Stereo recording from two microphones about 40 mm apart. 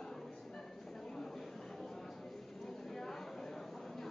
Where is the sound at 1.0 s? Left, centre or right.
Centre.